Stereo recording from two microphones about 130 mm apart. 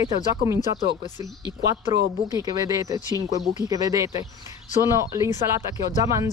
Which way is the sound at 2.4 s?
30° right (ahead or behind).